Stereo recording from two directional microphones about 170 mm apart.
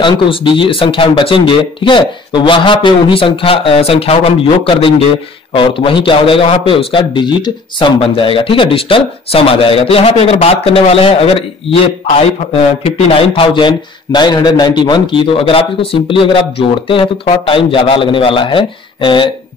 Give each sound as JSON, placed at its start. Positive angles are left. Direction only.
{"t": 0.0, "sound": "a man's voice", "side_deg": 30}
{"t": 12.8, "sound": "a man's voice", "side_deg": 35}